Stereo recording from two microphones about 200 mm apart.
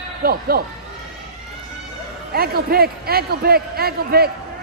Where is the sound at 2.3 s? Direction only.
50° right (ahead or behind).